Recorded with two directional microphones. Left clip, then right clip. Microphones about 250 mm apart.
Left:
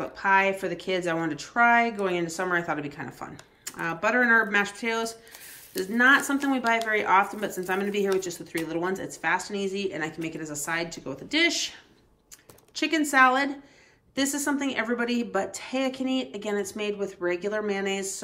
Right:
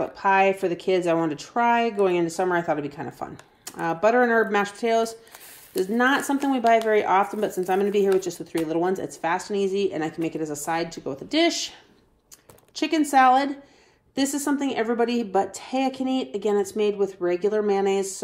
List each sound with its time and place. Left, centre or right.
0.0 s speech: centre
12.7 s speech: centre